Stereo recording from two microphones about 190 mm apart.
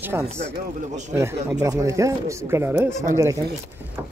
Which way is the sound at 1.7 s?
15° right (ahead or behind).